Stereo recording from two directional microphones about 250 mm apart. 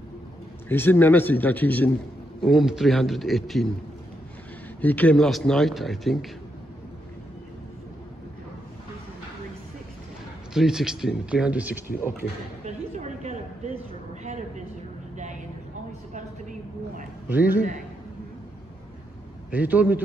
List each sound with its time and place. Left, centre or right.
0.7 s a man's voice: centre
4.8 s a man's voice: centre
10.5 s a man's voice: centre
12.6 s a sound: right
17.3 s a man's voice: centre
19.5 s a man's voice: centre